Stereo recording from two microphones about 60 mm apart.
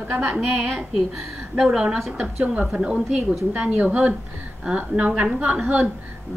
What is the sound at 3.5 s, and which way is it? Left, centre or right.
A woman's voice, right.